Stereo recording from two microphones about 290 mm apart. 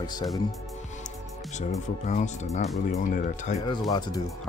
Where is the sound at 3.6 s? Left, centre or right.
Centre.